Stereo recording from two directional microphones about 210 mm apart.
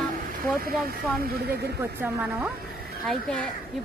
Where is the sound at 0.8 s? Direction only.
45° right (ahead or behind).